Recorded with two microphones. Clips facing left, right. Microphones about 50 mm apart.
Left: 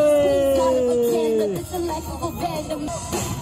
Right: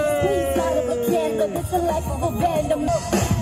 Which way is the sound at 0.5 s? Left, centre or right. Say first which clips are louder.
Left 3 dB; right.